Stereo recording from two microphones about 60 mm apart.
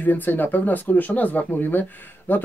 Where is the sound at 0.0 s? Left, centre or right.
Left.